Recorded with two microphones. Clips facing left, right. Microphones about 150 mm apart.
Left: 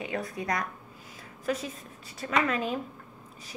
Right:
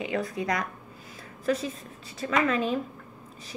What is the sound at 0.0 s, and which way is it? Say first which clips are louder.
A woman's voice: right 4 dB; 25° right (ahead or behind).